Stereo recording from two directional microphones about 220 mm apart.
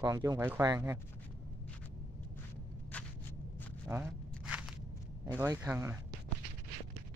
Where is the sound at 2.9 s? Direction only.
10° left (ahead or behind).